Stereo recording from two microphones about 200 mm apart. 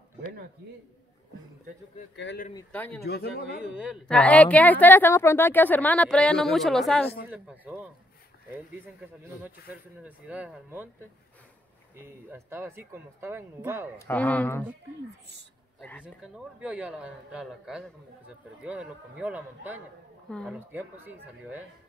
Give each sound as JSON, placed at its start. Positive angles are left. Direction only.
{"t": 2.1, "sound": "speech", "side_deg": 60}
{"t": 2.7, "sound": "a woman's voice", "side_deg": 10}
{"t": 3.0, "sound": "speech", "side_deg": 55}
{"t": 3.7, "sound": "a man's voice", "side_deg": -5}
{"t": 4.1, "sound": "a woman's voice", "side_deg": 5}
{"t": 10.0, "sound": "speech", "side_deg": -5}
{"t": 12.0, "sound": "speech", "side_deg": -10}
{"t": 13.9, "sound": "a woman's voice", "side_deg": 10}
{"t": 16.2, "sound": "a man's voice", "side_deg": -5}
{"t": 20.2, "sound": "a woman's voice", "side_deg": 5}
{"t": 20.5, "sound": "speech", "side_deg": -10}